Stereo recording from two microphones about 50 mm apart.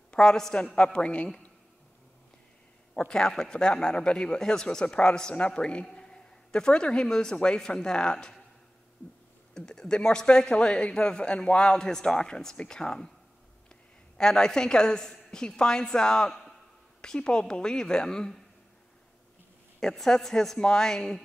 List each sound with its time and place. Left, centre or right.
0.1 s a woman's voice: centre
2.9 s a man's voice: centre
9.5 s speech: centre
14.1 s speech: centre
19.8 s speech: centre